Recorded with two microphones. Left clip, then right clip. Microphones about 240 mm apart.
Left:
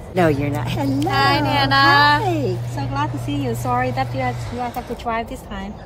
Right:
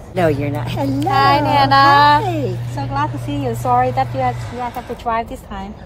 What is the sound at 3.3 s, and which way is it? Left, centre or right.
Child singing, centre.